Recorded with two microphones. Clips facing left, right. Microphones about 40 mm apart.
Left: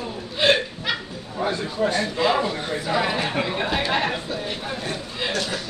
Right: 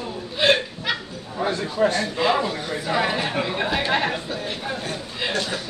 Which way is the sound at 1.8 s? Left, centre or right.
Right.